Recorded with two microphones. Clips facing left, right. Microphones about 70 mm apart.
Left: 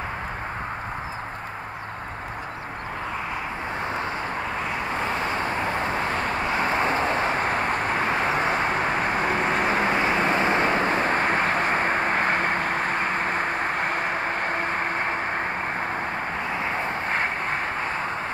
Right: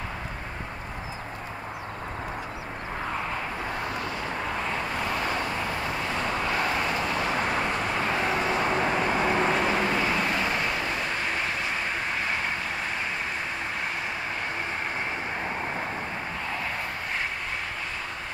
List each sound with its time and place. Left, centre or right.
4.9 s vehicle: left
17.1 s vehicle: left